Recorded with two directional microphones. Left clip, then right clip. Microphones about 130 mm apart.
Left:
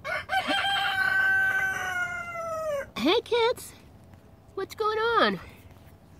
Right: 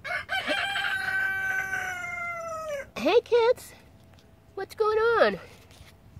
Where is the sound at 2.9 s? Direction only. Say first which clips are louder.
Right 3 dB; 25° right (ahead or behind).